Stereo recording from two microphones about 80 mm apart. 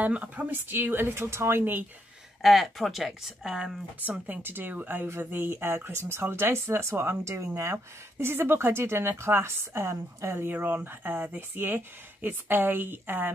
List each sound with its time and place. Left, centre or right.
0.0 s a woman's voice: centre
2.4 s speech: centre
4.0 s a woman's voice: right